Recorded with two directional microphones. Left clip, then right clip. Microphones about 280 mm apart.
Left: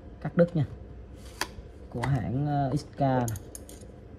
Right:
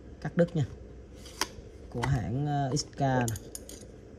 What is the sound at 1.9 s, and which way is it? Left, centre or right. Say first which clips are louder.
Speech: left 1 dB; right.